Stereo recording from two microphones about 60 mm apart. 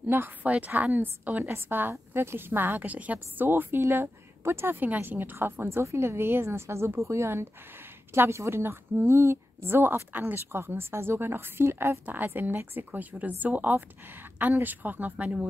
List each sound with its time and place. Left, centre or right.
0.0 s a woman's voice: right
3.4 s a woman's voice: right
5.7 s a woman's voice: right